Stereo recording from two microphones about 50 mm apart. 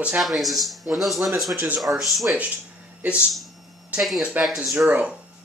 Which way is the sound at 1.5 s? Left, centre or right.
Right.